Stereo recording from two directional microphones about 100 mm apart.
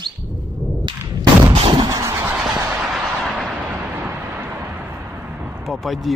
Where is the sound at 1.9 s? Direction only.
30° right (ahead or behind).